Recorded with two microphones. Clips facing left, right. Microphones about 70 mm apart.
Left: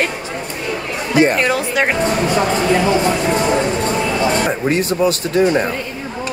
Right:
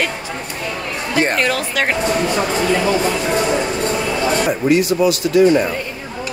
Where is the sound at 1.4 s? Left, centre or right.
Left.